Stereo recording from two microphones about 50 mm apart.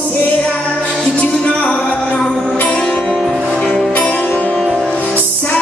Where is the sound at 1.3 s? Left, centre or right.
Centre.